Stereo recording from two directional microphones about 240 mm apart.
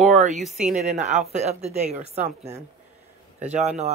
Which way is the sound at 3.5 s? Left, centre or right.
Right.